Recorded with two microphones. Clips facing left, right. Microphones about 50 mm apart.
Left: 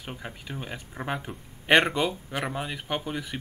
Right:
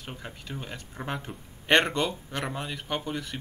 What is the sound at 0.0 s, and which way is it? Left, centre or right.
Speech, centre.